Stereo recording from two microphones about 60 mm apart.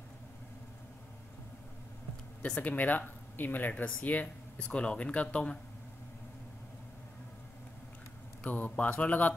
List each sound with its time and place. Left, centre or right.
2.6 s speech: left
8.5 s speech: left